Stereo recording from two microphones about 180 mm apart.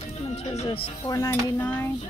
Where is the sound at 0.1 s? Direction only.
35° left (ahead or behind).